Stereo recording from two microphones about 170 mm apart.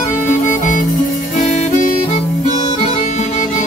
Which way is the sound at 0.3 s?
50° left (ahead or behind).